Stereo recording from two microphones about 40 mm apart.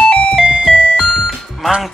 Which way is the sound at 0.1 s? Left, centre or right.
Left.